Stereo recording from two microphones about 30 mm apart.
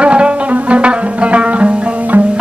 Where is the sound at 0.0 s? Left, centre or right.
Right.